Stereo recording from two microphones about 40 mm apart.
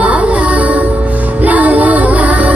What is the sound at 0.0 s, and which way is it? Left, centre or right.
Music, right.